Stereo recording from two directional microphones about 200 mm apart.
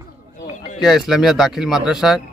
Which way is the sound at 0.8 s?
Centre (ahead or behind).